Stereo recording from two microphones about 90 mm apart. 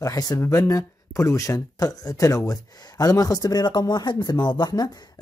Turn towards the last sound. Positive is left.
turn(degrees=50)  # may be behind; listen again after turning